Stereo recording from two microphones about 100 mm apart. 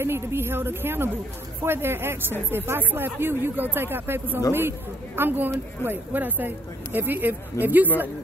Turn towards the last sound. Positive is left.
turn(degrees=-20)  # may be behind; listen again after turning